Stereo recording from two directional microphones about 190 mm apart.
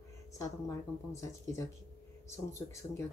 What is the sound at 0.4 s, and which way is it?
Speech, 15° left (ahead or behind).